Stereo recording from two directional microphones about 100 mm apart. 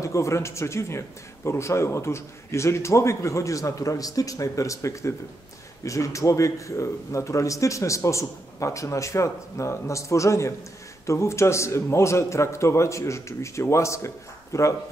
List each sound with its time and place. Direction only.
0.0 s a man's voice: 30° left (ahead or behind)